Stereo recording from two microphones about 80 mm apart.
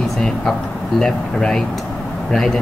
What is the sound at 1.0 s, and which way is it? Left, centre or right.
Speech, centre.